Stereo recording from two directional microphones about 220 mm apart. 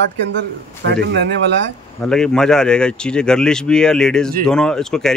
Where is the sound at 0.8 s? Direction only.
55° right (ahead or behind).